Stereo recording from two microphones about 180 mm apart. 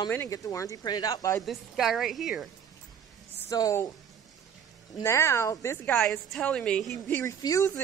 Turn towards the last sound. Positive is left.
turn(degrees=20)  # may be behind; listen again after turning